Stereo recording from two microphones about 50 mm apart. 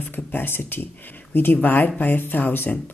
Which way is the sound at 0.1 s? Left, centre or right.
Left.